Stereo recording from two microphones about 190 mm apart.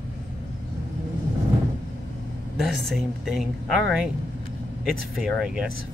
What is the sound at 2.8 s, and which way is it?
Speech, centre (ahead or behind).